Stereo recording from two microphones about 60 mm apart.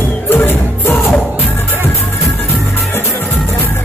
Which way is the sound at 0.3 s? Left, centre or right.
Left.